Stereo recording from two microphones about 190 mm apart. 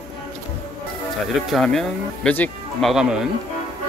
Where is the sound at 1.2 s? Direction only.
Centre (ahead or behind).